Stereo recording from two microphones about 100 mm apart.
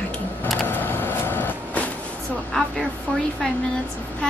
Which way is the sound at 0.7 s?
20° left (ahead or behind).